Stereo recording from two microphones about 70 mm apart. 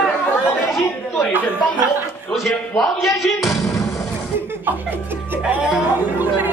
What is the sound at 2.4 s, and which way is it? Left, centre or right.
Music, centre.